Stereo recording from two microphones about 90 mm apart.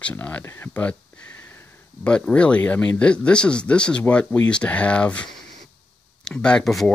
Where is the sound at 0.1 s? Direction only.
20° left (ahead or behind).